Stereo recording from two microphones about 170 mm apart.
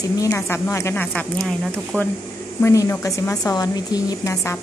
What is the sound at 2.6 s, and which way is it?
A woman's voice, 20° left (ahead or behind).